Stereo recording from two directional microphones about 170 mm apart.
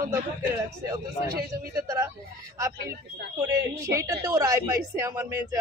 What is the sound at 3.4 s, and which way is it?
A man's voice, 20° right (ahead or behind).